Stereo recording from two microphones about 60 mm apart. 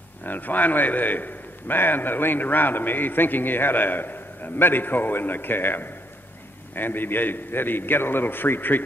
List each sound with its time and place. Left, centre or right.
0.2 s a man's voice: left